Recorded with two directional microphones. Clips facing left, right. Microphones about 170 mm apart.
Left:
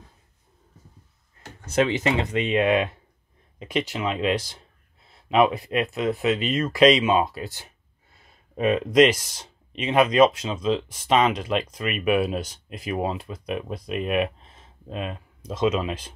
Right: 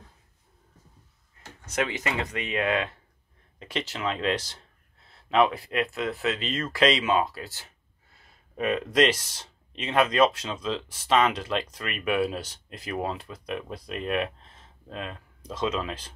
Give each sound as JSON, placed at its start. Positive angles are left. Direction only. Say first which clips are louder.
{"t": 1.7, "sound": "speech", "louder": "left 7 dB", "side_deg": 25}